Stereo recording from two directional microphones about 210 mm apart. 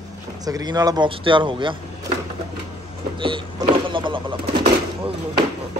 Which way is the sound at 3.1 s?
25° right (ahead or behind).